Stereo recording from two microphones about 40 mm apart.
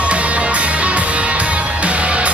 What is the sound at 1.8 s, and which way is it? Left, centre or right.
Music, right.